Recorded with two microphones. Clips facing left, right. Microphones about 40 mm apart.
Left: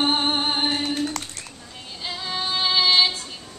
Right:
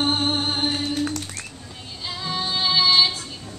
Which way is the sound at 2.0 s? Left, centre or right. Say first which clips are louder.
Even; centre.